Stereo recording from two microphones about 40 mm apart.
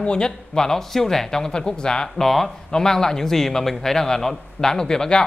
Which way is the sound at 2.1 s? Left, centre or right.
Centre.